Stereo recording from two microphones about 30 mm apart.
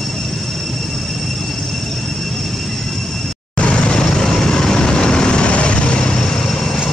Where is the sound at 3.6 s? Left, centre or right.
Left.